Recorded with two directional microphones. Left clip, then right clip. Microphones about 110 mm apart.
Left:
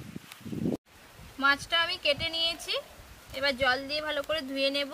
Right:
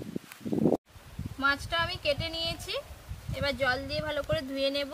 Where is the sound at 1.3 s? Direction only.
Centre (ahead or behind).